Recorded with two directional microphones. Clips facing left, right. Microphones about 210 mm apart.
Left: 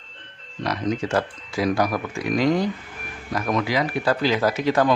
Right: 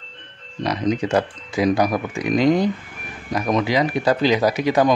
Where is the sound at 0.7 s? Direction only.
20° right (ahead or behind).